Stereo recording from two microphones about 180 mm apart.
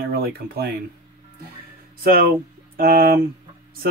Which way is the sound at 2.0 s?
55° right (ahead or behind).